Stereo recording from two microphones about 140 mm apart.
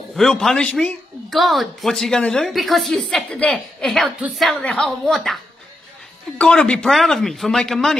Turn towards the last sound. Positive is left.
turn(degrees=5)  # may be behind; listen again after turning